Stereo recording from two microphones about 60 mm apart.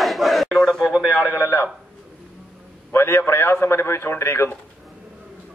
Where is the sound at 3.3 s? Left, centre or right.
Left.